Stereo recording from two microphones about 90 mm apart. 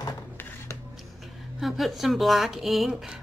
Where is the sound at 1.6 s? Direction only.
Centre (ahead or behind).